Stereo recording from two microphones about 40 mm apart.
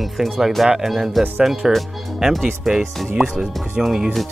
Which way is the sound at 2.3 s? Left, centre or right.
Centre.